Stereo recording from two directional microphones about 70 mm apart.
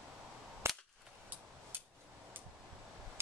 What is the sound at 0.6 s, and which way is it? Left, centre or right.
Cap gun, right.